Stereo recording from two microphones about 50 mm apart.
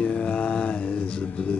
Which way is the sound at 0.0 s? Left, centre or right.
Left.